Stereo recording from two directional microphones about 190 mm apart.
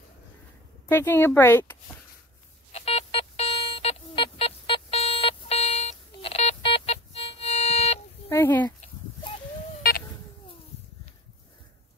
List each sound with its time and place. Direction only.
0.8 s speech: 10° left (ahead or behind)
2.7 s a sound: 35° left (ahead or behind)
8.3 s speech: 10° left (ahead or behind)